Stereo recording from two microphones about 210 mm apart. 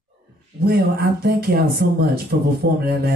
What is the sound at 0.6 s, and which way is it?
Music, 50° right (ahead or behind).